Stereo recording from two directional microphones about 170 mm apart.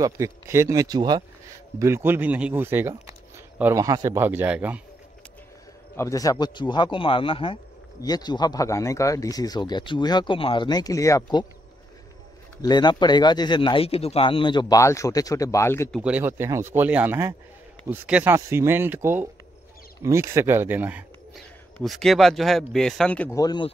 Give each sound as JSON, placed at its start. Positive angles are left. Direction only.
{"t": 0.0, "sound": "speech", "side_deg": -15}
{"t": 5.9, "sound": "speech", "side_deg": 20}
{"t": 12.6, "sound": "speech", "side_deg": 25}
{"t": 16.0, "sound": "speech", "side_deg": -10}
{"t": 21.7, "sound": "speech", "side_deg": 0}
{"t": 23.3, "sound": "speech", "side_deg": 25}